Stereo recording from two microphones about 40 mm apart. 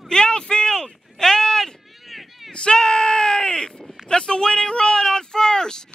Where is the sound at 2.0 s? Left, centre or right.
Centre.